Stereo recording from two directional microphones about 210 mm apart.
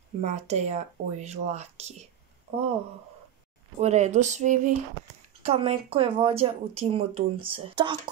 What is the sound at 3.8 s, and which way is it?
Speech, 30° right (ahead or behind).